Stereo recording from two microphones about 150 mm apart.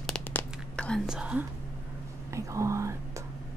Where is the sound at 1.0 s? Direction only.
5° right (ahead or behind).